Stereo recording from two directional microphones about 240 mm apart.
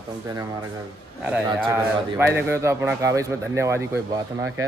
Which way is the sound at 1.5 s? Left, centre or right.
Centre.